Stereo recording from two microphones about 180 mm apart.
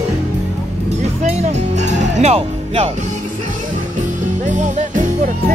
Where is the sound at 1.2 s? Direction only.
40° right (ahead or behind).